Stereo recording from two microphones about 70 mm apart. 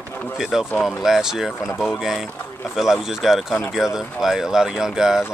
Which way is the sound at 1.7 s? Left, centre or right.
Left.